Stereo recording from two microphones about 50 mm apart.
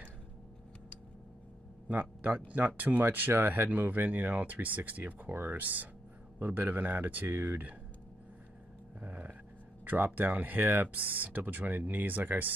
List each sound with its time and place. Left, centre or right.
1.9 s speech: right
5.3 s speech: right
9.0 s a sound: right
9.8 s speech: right